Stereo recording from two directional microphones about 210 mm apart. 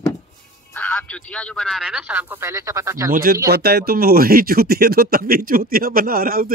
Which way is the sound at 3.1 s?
45° right (ahead or behind).